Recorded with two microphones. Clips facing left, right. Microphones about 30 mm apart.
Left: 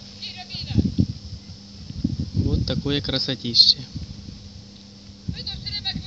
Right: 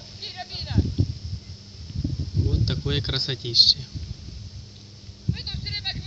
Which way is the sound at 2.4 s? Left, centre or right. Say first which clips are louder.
Left 3 dB; left.